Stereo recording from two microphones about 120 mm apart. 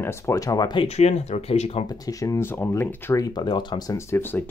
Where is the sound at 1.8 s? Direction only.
30° left (ahead or behind).